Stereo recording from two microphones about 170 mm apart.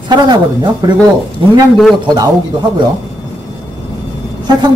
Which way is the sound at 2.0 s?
25° right (ahead or behind).